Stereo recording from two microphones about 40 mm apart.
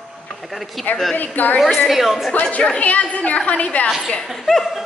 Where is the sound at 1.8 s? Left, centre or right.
Centre.